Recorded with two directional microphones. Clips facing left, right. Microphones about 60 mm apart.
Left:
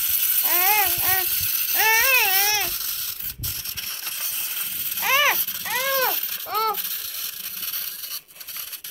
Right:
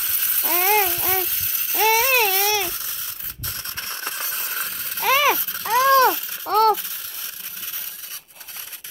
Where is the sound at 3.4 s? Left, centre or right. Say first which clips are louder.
Right 5 dB; right.